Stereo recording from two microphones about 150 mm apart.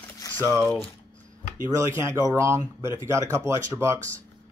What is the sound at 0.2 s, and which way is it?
Crumpling, 25° left (ahead or behind).